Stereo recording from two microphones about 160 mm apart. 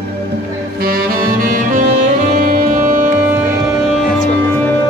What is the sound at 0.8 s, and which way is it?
Saxophone, 65° right (ahead or behind).